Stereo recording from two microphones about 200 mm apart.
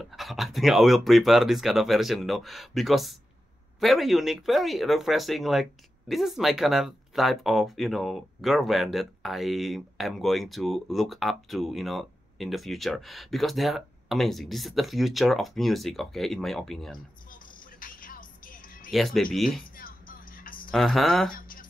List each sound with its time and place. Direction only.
0.0 s speech: centre (ahead or behind)
17.3 s music: 45° left (ahead or behind)
18.9 s speech: centre (ahead or behind)
19.8 s music: 45° left (ahead or behind)
20.7 s speech: centre (ahead or behind)